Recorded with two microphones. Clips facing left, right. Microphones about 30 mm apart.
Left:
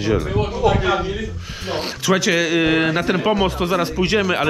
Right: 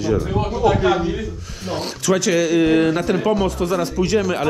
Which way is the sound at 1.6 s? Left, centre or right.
Left.